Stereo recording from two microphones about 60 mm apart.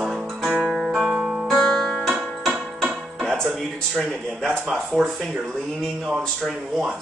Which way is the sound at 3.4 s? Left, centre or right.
Centre.